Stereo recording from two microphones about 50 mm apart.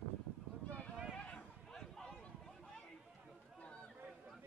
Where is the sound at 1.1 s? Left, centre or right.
Left.